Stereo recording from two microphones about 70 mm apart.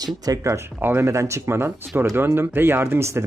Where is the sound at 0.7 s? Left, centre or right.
Right.